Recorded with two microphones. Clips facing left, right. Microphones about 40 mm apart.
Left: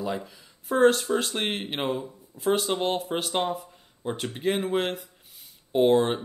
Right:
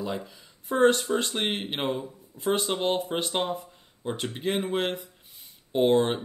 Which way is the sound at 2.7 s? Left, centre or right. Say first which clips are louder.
Even; centre.